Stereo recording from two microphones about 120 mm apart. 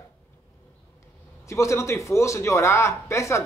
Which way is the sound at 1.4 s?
25° left (ahead or behind).